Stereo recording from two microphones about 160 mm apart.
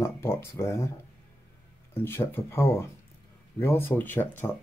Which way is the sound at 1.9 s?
15° left (ahead or behind).